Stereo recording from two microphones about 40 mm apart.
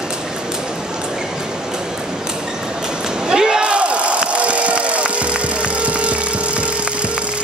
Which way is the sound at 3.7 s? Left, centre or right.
Right.